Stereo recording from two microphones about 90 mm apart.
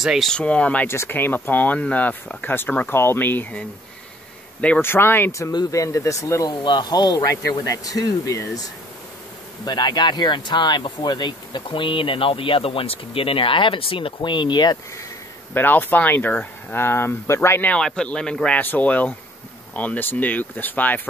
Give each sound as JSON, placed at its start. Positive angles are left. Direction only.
{"t": 0.0, "sound": "speech", "side_deg": -5}
{"t": 0.3, "sound": "speech", "side_deg": 15}
{"t": 0.8, "sound": "a man's voice", "side_deg": 25}
{"t": 4.8, "sound": "speech", "side_deg": 25}
{"t": 5.7, "sound": "speech", "side_deg": 35}
{"t": 6.6, "sound": "speech", "side_deg": 55}
{"t": 7.2, "sound": "speech", "side_deg": 40}
{"t": 9.7, "sound": "speech", "side_deg": 50}
{"t": 15.5, "sound": "speech", "side_deg": 20}
{"t": 17.6, "sound": "speech", "side_deg": 10}
{"t": 18.6, "sound": "speech", "side_deg": 20}